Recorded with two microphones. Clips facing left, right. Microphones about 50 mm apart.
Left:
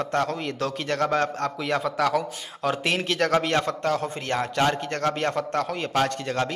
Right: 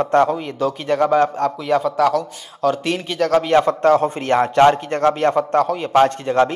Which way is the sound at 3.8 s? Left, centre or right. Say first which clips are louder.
Right 11 dB; right.